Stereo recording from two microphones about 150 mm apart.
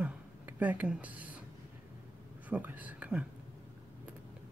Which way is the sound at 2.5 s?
10° right (ahead or behind).